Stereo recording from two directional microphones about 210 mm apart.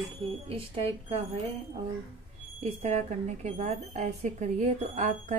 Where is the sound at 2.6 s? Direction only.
30° right (ahead or behind).